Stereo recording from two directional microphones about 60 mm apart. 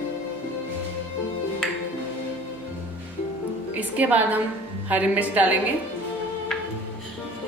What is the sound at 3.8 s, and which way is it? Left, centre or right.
A woman's voice, right.